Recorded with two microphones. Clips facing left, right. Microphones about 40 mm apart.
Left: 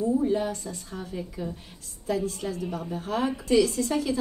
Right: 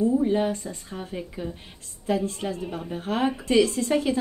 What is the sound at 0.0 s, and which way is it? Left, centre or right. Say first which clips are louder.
A woman's voice: right 3 dB; right.